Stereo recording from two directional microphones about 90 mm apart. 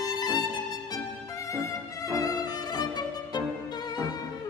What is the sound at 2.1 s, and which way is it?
Violin, 45° left (ahead or behind).